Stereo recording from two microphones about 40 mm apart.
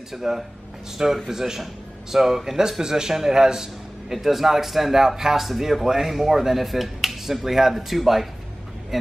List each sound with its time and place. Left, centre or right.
0.1 s speech: centre